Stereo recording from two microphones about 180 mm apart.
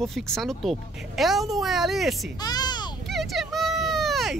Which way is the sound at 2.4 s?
20° left (ahead or behind).